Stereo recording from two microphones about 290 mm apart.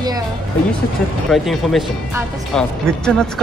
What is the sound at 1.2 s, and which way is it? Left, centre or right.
Speech, centre.